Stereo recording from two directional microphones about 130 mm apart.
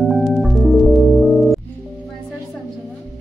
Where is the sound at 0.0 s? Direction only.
Centre (ahead or behind).